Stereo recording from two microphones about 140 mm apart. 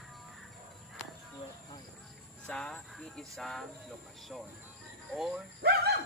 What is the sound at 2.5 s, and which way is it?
Speech, 5° left (ahead or behind).